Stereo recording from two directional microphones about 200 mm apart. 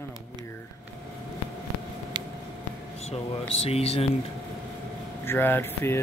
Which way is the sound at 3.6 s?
30° left (ahead or behind).